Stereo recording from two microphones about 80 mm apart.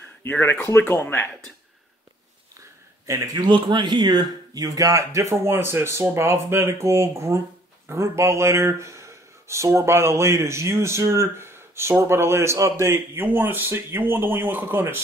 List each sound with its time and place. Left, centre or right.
0.2 s speech: left
3.1 s speech: right
3.4 s speech: right